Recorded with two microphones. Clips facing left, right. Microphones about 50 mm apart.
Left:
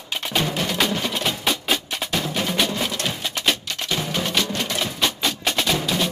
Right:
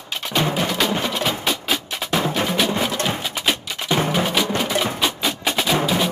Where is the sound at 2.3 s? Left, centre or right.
Centre.